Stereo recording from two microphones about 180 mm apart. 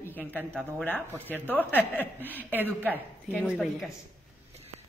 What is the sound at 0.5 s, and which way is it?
Speech, 5° left (ahead or behind).